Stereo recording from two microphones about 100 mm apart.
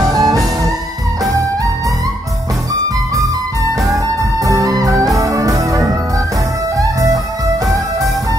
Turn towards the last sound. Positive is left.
turn(degrees=-35)  # may be behind; listen again after turning